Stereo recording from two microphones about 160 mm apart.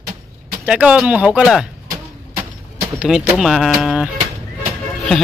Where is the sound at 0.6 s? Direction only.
5° right (ahead or behind).